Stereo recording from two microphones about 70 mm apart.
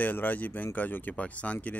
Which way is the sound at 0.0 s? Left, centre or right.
Left.